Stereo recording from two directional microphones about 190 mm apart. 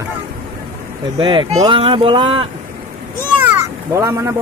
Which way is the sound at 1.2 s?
25° right (ahead or behind).